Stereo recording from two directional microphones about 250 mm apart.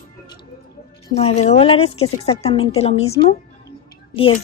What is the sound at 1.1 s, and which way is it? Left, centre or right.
Speech, left.